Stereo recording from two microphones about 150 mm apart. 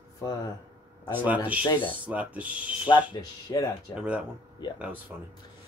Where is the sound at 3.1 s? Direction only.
25° left (ahead or behind).